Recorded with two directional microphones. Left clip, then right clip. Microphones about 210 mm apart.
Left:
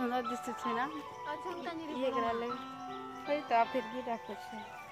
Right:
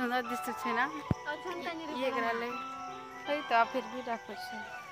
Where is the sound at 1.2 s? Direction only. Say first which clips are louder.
Left 2 dB; 30° right (ahead or behind).